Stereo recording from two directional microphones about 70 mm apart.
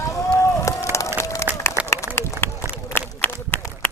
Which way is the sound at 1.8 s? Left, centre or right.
Left.